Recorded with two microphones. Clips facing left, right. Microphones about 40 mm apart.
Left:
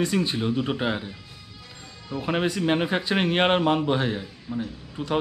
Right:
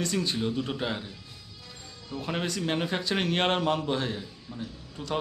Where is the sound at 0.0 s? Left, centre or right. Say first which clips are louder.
Left 4 dB; centre.